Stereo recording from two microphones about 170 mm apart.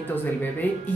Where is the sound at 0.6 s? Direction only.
10° left (ahead or behind).